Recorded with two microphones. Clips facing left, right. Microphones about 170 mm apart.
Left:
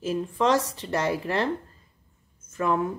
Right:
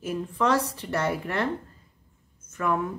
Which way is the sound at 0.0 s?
25° left (ahead or behind).